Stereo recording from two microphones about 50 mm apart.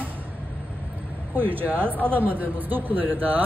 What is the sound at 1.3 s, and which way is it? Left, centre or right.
A man's voice, right.